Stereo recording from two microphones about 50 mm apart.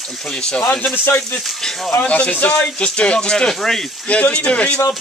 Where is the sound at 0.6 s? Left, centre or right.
Left.